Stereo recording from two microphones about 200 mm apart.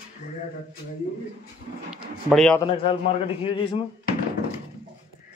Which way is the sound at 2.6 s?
25° left (ahead or behind).